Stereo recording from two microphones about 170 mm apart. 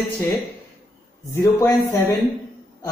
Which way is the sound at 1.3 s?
15° left (ahead or behind).